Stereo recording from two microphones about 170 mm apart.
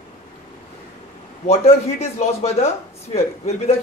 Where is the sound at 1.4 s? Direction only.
35° left (ahead or behind).